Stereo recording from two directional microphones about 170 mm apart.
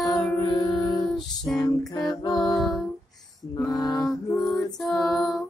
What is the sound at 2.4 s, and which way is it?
Music, centre (ahead or behind).